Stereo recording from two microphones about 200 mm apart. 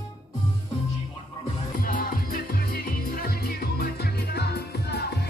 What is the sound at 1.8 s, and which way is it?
Music, 45° left (ahead or behind).